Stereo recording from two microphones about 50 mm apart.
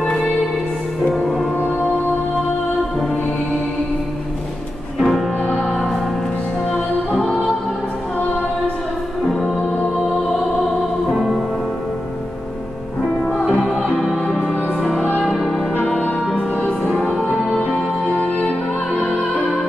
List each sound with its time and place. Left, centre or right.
0.0 s music: left
5.0 s music: centre
11.1 s music: centre
13.4 s music: centre
14.8 s music: centre
16.9 s music: centre
17.6 s music: centre